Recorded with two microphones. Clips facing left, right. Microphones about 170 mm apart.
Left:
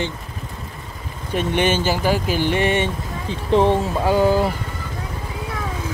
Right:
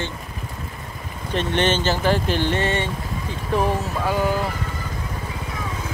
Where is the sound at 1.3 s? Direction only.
10° left (ahead or behind); by 4.5 s 25° left (ahead or behind).